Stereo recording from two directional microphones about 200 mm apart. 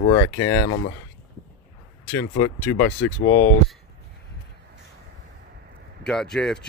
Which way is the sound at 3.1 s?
45° left (ahead or behind).